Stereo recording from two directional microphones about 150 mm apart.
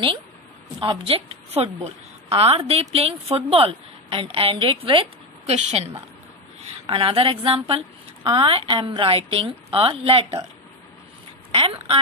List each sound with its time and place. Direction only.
0.7 s a woman's voice: 35° right (ahead or behind)
11.5 s a woman's voice: 40° right (ahead or behind)